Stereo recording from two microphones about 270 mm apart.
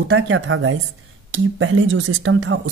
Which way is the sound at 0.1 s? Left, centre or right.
Right.